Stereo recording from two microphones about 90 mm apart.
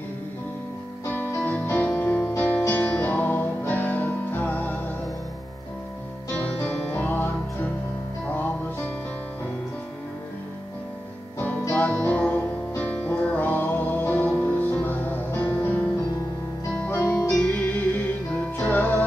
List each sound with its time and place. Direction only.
1.0 s music: 20° left (ahead or behind)
6.3 s music: 15° left (ahead or behind)
11.3 s music: 20° left (ahead or behind)
17.5 s music: 15° left (ahead or behind)